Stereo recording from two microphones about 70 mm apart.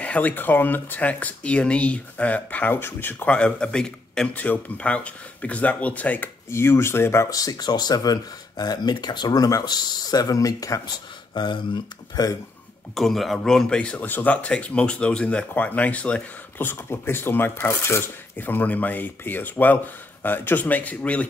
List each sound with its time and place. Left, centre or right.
0.0 s speech: left
3.3 s a man's voice: centre
4.3 s speech: left
6.5 s speech: left
7.2 s speech: left
11.3 s speech: left
12.9 s speech: centre